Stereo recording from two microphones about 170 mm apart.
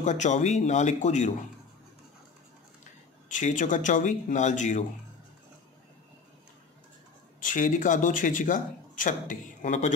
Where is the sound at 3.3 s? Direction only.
50° left (ahead or behind).